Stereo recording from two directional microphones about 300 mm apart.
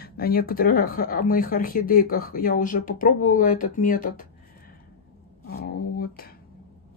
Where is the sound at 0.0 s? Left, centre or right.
Left.